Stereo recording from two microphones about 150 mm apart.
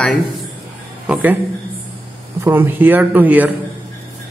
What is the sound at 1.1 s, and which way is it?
Speech, 10° right (ahead or behind).